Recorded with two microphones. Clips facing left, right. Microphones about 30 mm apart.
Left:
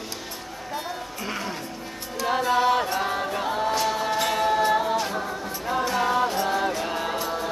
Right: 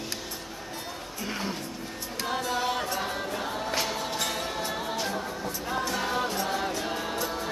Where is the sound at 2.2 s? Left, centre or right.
Left.